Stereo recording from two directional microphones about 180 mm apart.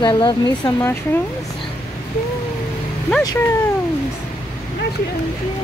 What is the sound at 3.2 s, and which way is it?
Speech, 15° left (ahead or behind).